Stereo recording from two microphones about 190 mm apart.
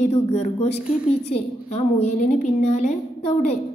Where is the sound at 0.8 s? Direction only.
5° right (ahead or behind).